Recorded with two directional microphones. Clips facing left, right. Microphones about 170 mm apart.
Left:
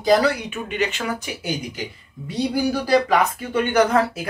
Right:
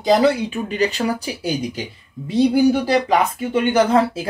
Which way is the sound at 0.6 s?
35° right (ahead or behind).